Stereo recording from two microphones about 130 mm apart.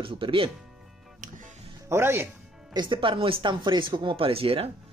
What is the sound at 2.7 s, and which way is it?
Speech, 35° right (ahead or behind).